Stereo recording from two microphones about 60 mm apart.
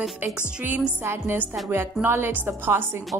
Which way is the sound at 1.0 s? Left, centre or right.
Right.